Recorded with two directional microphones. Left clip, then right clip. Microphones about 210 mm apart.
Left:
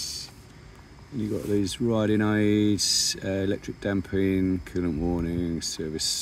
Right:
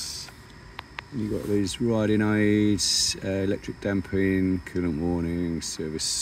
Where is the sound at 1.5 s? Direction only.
5° right (ahead or behind).